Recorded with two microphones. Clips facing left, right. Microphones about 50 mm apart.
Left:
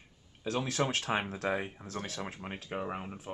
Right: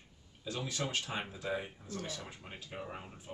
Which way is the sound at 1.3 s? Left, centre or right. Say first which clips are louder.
Left 5 dB; left.